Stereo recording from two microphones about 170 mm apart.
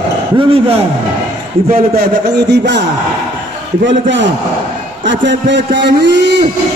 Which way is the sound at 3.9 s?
90° right.